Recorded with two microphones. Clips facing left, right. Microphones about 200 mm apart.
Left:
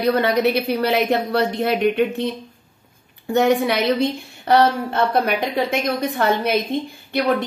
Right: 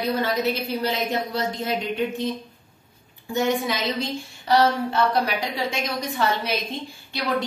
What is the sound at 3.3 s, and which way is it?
A woman's voice, 65° left (ahead or behind).